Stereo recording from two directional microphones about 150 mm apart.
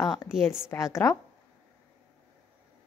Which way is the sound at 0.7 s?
20° left (ahead or behind).